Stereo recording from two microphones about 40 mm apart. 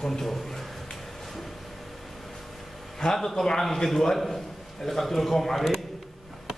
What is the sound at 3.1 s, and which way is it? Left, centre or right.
A man's voice, centre.